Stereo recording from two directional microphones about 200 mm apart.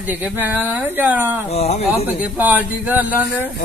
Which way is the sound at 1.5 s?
30° left (ahead or behind).